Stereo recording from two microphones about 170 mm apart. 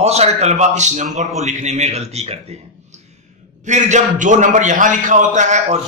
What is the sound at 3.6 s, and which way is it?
A man's voice, 45° right (ahead or behind).